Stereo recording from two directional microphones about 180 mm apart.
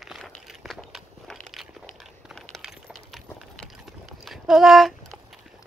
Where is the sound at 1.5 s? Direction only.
Centre (ahead or behind).